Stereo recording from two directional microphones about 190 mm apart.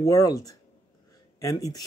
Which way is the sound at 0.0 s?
15° left (ahead or behind).